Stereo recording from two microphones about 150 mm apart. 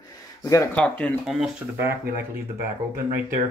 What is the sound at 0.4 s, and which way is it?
Speech, 20° left (ahead or behind).